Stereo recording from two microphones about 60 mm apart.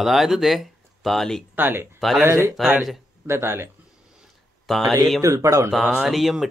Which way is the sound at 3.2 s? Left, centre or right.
Right.